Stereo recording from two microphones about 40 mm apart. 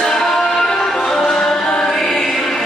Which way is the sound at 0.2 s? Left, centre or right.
Centre.